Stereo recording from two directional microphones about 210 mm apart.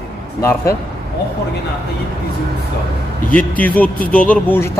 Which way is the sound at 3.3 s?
5° left (ahead or behind).